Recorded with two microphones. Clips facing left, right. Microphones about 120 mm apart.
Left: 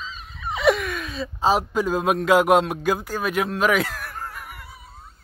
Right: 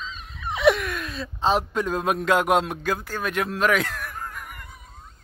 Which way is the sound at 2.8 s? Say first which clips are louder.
Left 3 dB; 10° left (ahead or behind).